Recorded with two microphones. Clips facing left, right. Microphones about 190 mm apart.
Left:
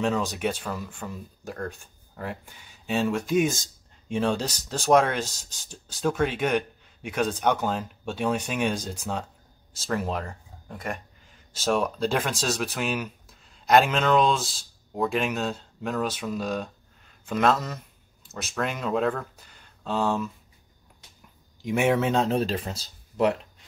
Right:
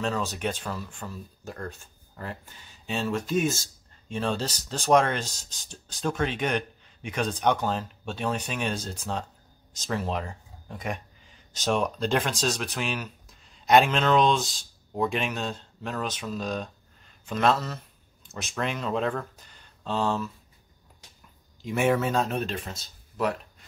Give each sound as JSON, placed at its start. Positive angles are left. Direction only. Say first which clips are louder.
{"t": 0.2, "sound": "speech", "louder": "left 2 dB", "side_deg": 10}
{"t": 21.6, "sound": "speech", "louder": "left 2 dB", "side_deg": 15}